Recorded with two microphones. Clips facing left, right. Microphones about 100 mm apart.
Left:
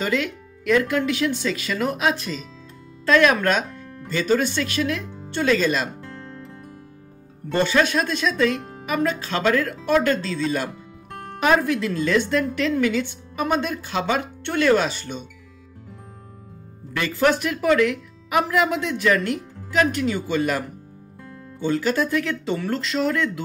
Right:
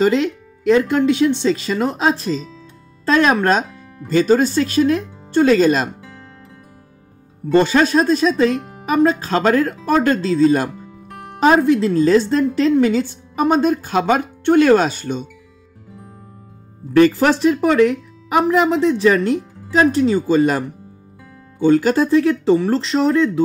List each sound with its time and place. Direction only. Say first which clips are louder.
0.0 s a woman's voice: right 8 dB; 30° right (ahead or behind)
3.7 s music: right 1 dB; 5° right (ahead or behind)
4.1 s a woman's voice: right 7 dB; 40° right (ahead or behind)
5.9 s music: left 3 dB; 5° right (ahead or behind)
7.5 s a woman's voice: right 6 dB; 40° right (ahead or behind)
8.5 s music: right 6 dB; 5° right (ahead or behind)
8.8 s a woman's voice: right 8 dB; 35° right (ahead or behind)
10.7 s music: right 2 dB; 5° right (ahead or behind)
11.3 s a woman's voice: right 6 dB; 30° right (ahead or behind)
16.9 s a woman's voice: right 8 dB; 40° right (ahead or behind)